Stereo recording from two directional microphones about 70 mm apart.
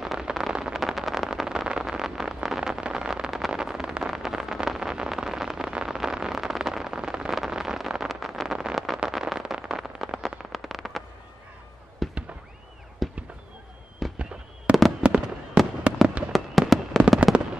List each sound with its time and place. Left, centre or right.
0.0 s a sound: centre
12.0 s fireworks: centre
14.7 s fireworks: centre